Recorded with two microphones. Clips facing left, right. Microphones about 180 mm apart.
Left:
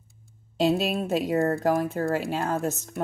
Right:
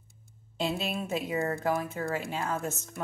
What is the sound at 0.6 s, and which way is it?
Speech, 40° left (ahead or behind).